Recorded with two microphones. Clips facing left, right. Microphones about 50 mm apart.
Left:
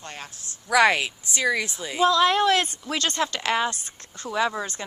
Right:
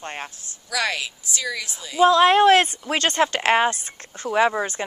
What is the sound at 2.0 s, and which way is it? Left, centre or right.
Speech, right.